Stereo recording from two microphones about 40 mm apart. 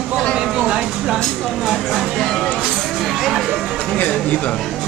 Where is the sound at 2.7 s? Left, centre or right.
Centre.